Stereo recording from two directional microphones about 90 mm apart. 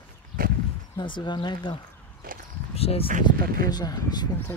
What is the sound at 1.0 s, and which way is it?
Speech, 60° left (ahead or behind).